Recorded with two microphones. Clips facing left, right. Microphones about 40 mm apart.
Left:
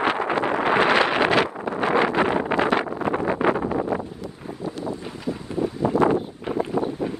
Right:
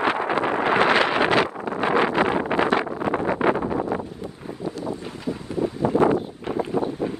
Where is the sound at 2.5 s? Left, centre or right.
Left.